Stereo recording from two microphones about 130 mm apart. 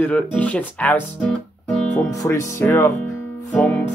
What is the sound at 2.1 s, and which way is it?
Speech, 25° left (ahead or behind).